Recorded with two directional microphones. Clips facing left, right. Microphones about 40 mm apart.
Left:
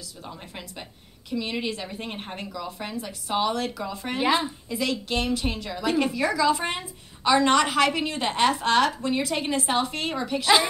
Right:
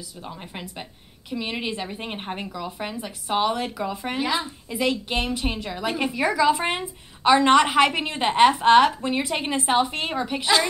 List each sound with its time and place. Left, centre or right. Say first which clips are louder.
0.3 s a woman's voice: right 3 dB; centre